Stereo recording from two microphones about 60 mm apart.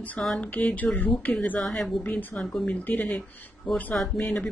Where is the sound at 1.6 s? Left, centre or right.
Centre.